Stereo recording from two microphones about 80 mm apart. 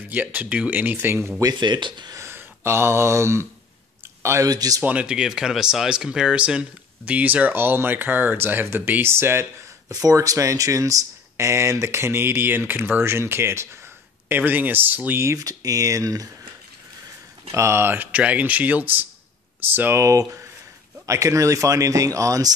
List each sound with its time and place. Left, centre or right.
0.1 s speech: right
1.4 s speech: right
2.1 s speech: right
4.5 s speech: right
4.8 s speech: centre; by 9.5 s right
9.8 s speech: right
15.2 s speech: right
17.5 s speech: right
20.0 s speech: right